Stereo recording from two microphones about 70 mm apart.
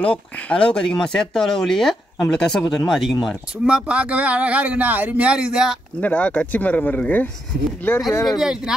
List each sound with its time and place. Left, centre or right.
0.0 s speech: centre
3.6 s speech: centre
5.9 s speech: centre
7.9 s speech: left
8.4 s speech: centre